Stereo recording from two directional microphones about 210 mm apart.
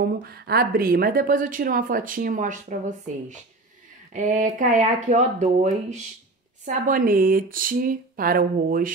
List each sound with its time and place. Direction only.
0.0 s speech: 45° right (ahead or behind)
4.1 s speech: 35° right (ahead or behind)